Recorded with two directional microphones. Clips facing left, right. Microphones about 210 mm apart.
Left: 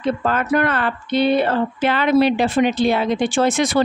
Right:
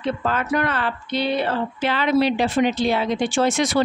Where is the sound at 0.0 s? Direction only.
50° left (ahead or behind).